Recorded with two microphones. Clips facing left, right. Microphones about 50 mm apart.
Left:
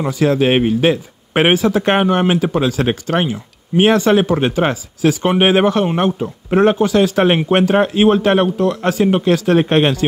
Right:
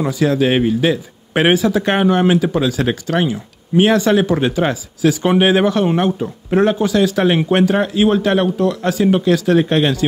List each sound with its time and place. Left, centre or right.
0.1 s speech: left